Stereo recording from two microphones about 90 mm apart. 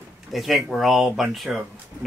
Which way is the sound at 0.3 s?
Centre (ahead or behind).